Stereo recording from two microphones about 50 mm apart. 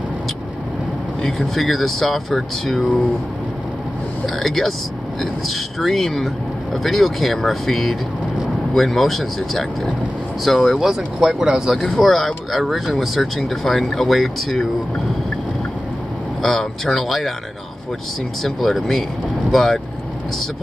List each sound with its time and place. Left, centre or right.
1.2 s speech: centre
4.4 s speech: centre
11.8 s speech: centre
16.4 s speech: centre
18.4 s speech: centre